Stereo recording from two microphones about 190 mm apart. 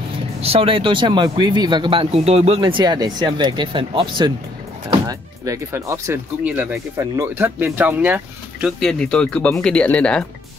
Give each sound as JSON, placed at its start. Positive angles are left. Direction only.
{"t": 0.4, "sound": "speech", "side_deg": -30}